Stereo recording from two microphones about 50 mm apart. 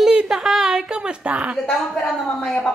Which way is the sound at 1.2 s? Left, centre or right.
Right.